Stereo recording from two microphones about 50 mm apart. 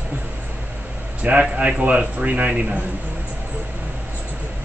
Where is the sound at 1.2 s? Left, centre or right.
Right.